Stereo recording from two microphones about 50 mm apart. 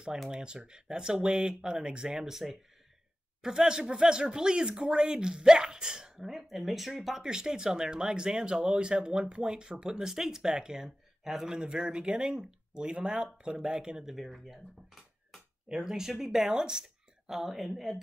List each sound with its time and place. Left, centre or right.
0.3 s speech: centre
14.1 s speech: centre